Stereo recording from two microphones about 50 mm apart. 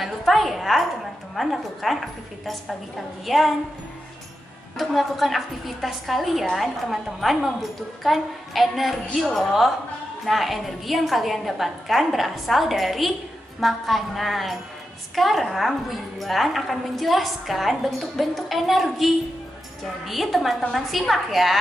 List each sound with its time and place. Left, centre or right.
0.0 s a sound: centre
1.3 s a woman's voice: centre
4.7 s a woman's voice: centre